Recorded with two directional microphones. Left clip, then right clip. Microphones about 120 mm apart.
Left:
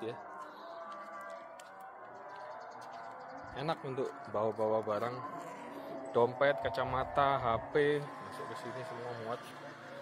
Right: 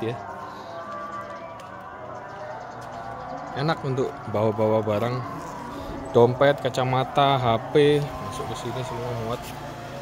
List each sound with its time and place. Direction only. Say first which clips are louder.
3.5 s a man's voice: right 11 dB; 10° right (ahead or behind)
6.1 s a man's voice: right 12 dB; 35° right (ahead or behind)